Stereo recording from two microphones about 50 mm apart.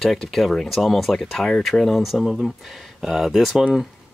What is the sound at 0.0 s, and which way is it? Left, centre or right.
Speech, centre.